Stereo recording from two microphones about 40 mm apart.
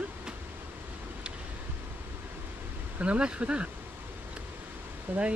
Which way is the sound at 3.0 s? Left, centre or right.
Right.